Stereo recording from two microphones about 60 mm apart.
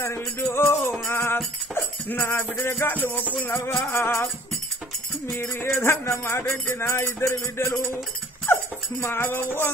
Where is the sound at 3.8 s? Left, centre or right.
Left.